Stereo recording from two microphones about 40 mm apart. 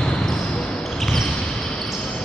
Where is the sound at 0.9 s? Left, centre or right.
Centre.